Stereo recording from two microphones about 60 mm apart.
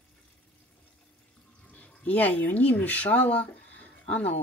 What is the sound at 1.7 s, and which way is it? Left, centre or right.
Speech, left.